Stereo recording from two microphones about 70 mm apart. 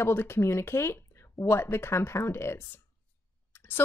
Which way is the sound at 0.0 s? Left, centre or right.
Left.